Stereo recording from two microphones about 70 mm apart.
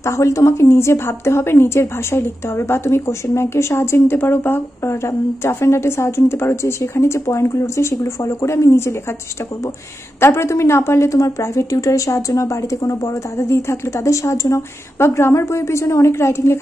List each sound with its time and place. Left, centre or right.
0.0 s a woman's voice: left
10.2 s a woman's voice: left